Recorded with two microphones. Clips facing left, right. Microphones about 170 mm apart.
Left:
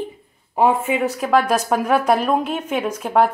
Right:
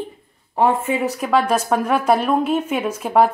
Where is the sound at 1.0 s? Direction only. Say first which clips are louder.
Left 1 dB; 10° right (ahead or behind).